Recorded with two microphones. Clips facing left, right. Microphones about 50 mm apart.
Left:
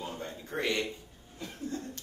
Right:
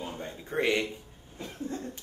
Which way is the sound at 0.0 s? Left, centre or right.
Centre.